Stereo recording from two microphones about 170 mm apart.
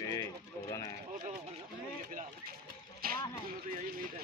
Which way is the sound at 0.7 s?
20° left (ahead or behind).